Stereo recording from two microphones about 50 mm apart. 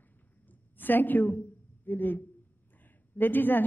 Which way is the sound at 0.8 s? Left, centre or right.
Left.